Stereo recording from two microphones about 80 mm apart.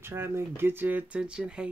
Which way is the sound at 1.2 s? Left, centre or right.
Centre.